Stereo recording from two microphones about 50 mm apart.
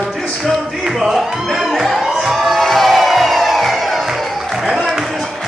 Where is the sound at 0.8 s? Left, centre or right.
Centre.